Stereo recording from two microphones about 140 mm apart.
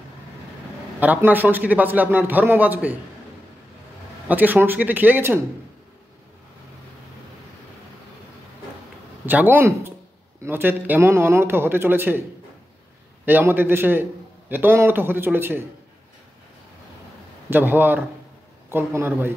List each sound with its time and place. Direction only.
0.9 s a man's voice: 10° right (ahead or behind)
4.3 s a man's voice: 10° right (ahead or behind)
9.2 s a man's voice: 15° right (ahead or behind)
13.2 s a man's voice: 15° right (ahead or behind)
17.5 s a man's voice: 15° right (ahead or behind)